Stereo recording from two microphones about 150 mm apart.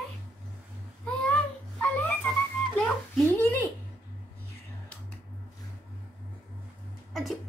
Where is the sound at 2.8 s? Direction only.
10° left (ahead or behind).